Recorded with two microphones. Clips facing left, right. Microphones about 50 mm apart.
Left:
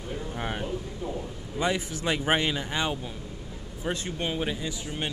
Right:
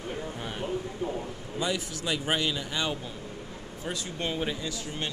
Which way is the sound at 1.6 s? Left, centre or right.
Left.